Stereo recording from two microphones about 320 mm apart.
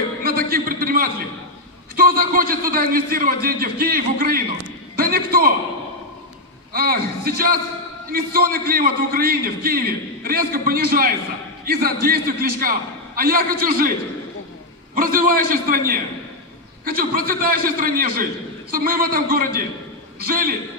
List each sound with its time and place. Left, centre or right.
0.2 s a sound: right
2.0 s a man's voice: right
6.7 s a man's voice: right
15.0 s a man's voice: right